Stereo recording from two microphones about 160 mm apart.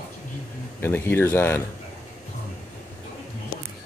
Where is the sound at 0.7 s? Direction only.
15° left (ahead or behind).